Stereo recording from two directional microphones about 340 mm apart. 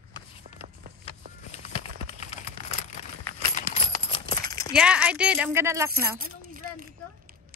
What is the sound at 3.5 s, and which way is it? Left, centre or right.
Horse, centre.